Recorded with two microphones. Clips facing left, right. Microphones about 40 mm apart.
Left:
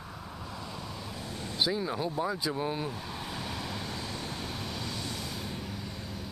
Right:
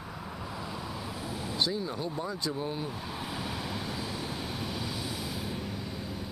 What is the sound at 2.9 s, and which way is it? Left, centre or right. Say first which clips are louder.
Vehicle: right 1 dB; centre.